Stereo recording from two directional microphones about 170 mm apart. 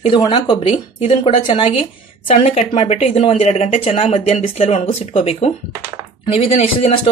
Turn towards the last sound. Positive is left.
turn(degrees=35)  # may be behind; listen again after turning